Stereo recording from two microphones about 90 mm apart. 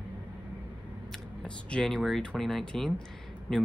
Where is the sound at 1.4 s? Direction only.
5° left (ahead or behind).